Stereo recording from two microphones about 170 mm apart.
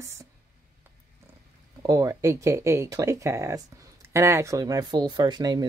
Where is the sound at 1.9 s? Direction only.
20° right (ahead or behind).